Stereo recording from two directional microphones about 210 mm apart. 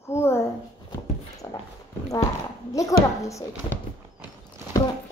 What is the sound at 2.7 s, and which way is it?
Speech, 15° left (ahead or behind).